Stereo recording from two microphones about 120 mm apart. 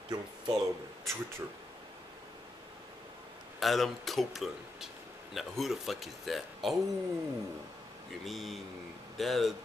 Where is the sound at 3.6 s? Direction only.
Centre (ahead or behind).